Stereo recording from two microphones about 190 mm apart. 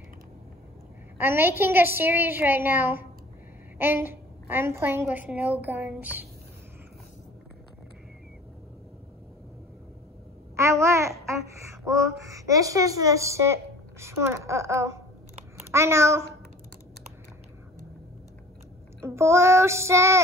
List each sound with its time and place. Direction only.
1.1 s a child's voice: 10° right (ahead or behind)
10.5 s babbling: 15° right (ahead or behind)
15.7 s a child's voice: 15° right (ahead or behind)
19.0 s a child's voice: 15° right (ahead or behind)